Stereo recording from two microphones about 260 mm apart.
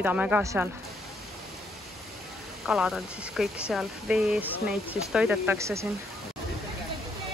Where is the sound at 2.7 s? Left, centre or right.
Centre.